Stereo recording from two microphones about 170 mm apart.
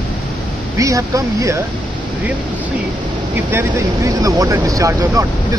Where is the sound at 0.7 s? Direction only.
20° right (ahead or behind).